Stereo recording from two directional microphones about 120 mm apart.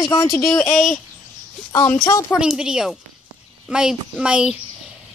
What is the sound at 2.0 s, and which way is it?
Speech, 25° left (ahead or behind).